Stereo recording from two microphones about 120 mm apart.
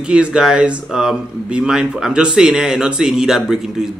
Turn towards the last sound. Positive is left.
turn(degrees=-5)  # may be behind; listen again after turning